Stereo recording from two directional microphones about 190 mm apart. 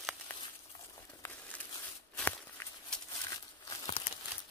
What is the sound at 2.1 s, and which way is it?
Walk, 5° left (ahead or behind).